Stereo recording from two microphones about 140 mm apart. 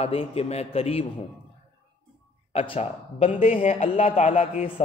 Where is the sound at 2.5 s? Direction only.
45° left (ahead or behind).